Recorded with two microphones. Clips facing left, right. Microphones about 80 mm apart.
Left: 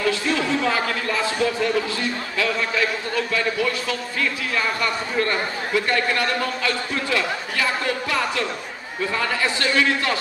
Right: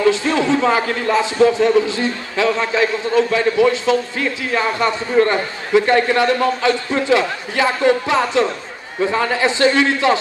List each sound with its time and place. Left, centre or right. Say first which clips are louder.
0.0 s a man's voice: right 6 dB; right